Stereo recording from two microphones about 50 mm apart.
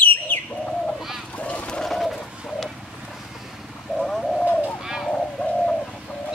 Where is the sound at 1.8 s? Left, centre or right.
Centre.